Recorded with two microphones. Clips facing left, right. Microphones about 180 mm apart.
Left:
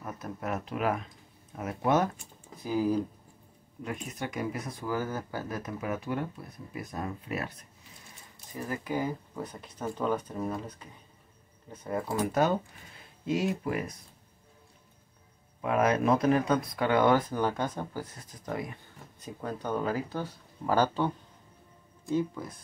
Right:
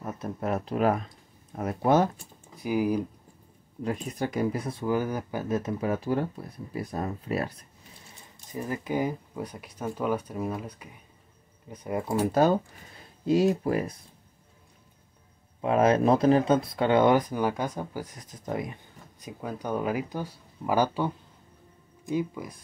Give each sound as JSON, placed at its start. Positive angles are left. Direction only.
{"t": 0.0, "sound": "speech", "side_deg": -30}
{"t": 2.6, "sound": "speech", "side_deg": -15}
{"t": 3.8, "sound": "speech", "side_deg": -35}
{"t": 8.5, "sound": "speech", "side_deg": -20}
{"t": 12.2, "sound": "speech", "side_deg": -35}
{"t": 15.6, "sound": "speech", "side_deg": -30}